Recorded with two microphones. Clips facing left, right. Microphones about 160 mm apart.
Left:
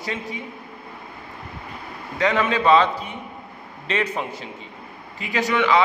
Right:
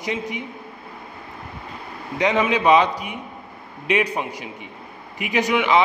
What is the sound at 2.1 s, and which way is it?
A man's voice, 20° right (ahead or behind).